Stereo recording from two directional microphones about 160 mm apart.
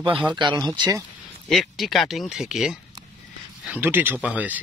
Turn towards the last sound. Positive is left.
turn(degrees=-10)  # may be behind; listen again after turning